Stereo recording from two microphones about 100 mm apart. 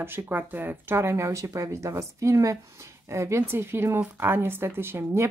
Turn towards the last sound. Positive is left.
turn(degrees=-25)  # may be behind; listen again after turning